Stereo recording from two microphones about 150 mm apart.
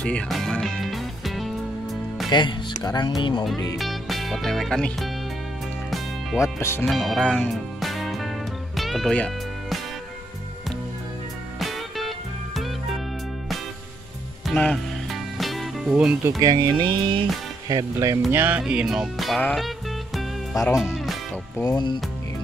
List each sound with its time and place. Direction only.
0.0 s music: 5° left (ahead or behind)
2.2 s speech: 30° left (ahead or behind)
3.7 s speech: centre (ahead or behind)
6.4 s speech: 15° left (ahead or behind)
6.9 s music: centre (ahead or behind)
14.4 s music: centre (ahead or behind)
16.3 s speech: 25° right (ahead or behind)
17.6 s speech: 25° right (ahead or behind)
18.3 s music: 15° right (ahead or behind)
20.6 s speech: 5° right (ahead or behind)
21.5 s speech: 25° left (ahead or behind)